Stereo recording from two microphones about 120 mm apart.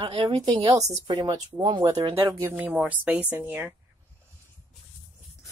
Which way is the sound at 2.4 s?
20° right (ahead or behind).